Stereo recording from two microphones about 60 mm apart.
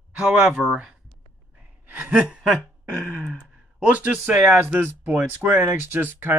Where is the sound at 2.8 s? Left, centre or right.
Right.